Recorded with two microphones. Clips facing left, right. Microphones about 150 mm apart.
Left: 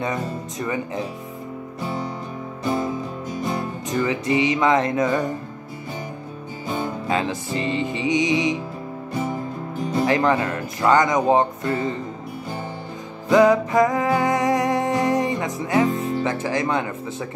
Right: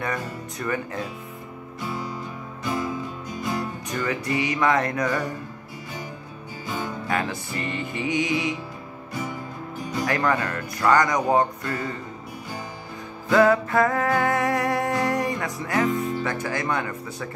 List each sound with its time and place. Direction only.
0.0 s speech: 20° left (ahead or behind)
2.6 s music: 25° left (ahead or behind)
7.1 s speech: 20° left (ahead or behind)
10.0 s speech: 20° left (ahead or behind)
13.3 s music: 15° left (ahead or behind)